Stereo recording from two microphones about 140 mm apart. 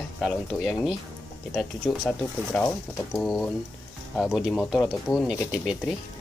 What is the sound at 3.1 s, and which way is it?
Speech, centre (ahead or behind).